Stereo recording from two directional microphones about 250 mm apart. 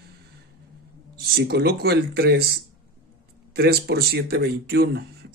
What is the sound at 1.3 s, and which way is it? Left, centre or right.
Speech, right.